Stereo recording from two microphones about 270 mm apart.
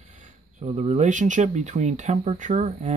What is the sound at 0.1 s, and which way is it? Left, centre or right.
Speech, right.